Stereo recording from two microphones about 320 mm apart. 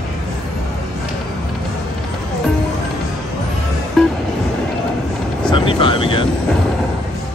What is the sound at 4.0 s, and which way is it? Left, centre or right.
Music, centre.